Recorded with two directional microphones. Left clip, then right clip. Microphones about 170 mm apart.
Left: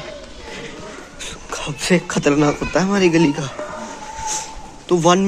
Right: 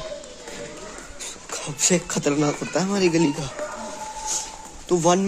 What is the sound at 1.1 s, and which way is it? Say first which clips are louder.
Speech: left 6 dB; centre (ahead or behind).